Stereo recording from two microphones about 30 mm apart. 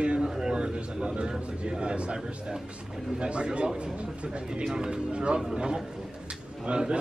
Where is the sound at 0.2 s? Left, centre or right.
Right.